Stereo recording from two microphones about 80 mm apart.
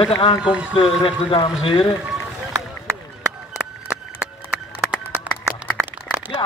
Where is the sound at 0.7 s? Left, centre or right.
Left.